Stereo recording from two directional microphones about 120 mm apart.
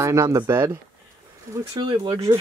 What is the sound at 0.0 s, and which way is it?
Speech, 25° right (ahead or behind).